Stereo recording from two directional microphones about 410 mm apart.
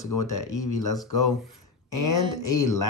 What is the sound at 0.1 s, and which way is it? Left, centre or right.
Speech, left.